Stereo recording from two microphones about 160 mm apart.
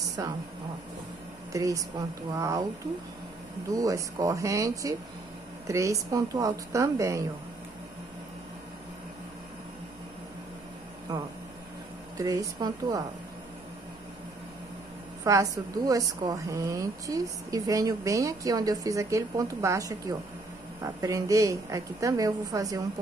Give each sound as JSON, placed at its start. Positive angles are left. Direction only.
{"t": 0.2, "sound": "a woman's voice", "side_deg": -20}
{"t": 1.5, "sound": "a woman's voice", "side_deg": -20}
{"t": 3.7, "sound": "a woman's voice", "side_deg": -20}
{"t": 12.2, "sound": "a woman's voice", "side_deg": -20}
{"t": 15.2, "sound": "a woman's voice", "side_deg": -20}